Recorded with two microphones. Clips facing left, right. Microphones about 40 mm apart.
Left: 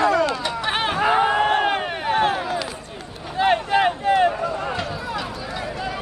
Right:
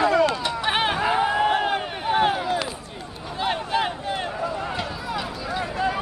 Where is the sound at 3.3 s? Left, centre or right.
Left.